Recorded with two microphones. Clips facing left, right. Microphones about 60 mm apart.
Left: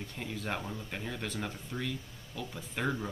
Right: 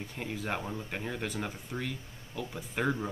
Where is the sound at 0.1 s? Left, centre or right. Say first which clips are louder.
Right 2 dB; centre.